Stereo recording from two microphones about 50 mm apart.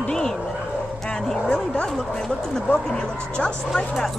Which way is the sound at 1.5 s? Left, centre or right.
Centre.